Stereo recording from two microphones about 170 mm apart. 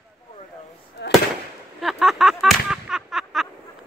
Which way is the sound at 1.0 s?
90° left.